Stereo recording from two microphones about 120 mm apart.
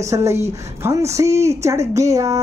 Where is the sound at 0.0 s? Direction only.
25° right (ahead or behind).